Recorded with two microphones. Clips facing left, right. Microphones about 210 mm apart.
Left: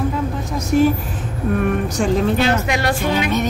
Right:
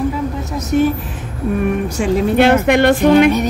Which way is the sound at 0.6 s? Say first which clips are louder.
Right 1 dB; 5° right (ahead or behind).